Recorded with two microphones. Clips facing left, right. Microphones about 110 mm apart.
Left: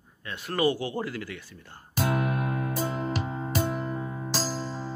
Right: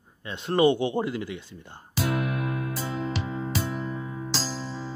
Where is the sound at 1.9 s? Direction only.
50° left (ahead or behind).